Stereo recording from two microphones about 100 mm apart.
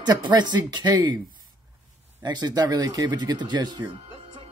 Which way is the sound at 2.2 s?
45° right (ahead or behind).